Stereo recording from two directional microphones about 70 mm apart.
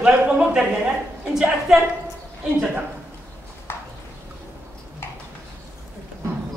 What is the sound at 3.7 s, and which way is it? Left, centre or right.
Clip-clop, left.